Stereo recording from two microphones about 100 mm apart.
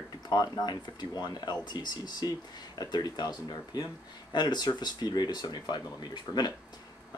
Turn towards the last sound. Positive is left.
turn(degrees=45)  # may be behind; listen again after turning